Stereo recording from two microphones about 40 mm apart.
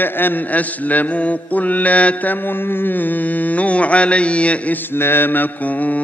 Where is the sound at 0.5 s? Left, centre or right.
Left.